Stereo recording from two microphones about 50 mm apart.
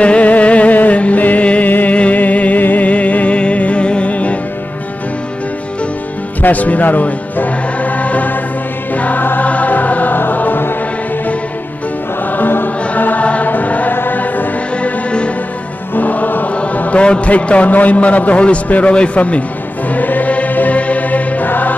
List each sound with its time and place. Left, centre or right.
0.0 s music: left
6.4 s music: left
12.3 s music: left
12.9 s choir: left
13.5 s chant: left
13.9 s music: left
14.8 s music: left
15.9 s music: left
16.5 s chant: left
17.0 s a man's voice: left
19.9 s music: left